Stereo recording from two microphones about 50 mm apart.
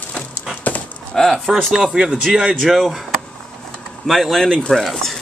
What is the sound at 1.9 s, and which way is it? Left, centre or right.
Speech, centre.